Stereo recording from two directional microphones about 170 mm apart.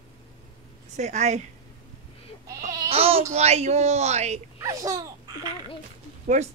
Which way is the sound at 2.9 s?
35° right (ahead or behind).